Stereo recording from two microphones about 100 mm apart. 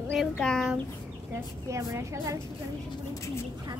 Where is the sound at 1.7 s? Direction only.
30° right (ahead or behind).